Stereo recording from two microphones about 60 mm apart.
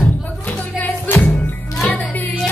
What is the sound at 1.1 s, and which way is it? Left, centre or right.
Music, left.